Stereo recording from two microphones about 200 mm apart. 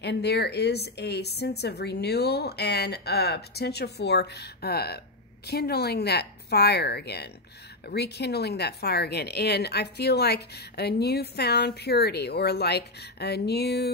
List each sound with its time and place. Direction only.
0.0 s speech: 55° left (ahead or behind)